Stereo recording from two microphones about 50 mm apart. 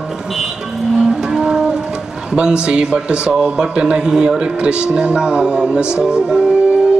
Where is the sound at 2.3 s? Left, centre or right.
Centre.